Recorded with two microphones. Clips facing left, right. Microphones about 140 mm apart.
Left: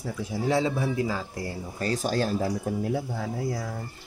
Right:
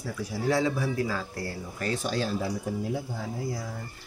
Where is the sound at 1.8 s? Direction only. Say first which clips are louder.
Left 3 dB; 40° left (ahead or behind).